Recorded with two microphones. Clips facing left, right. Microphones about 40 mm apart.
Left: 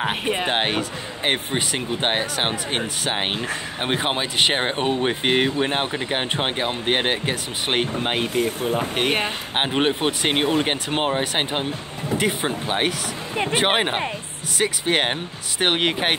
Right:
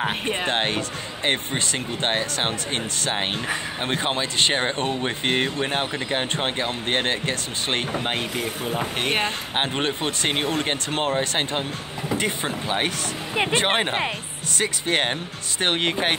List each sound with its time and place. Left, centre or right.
0.0 s speech: centre
0.5 s speech: centre
8.4 s speech: centre
12.2 s speech: centre
13.3 s speech: right
13.6 s speech: centre